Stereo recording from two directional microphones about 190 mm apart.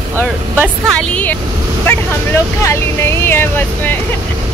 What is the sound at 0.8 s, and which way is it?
Speech, 5° left (ahead or behind).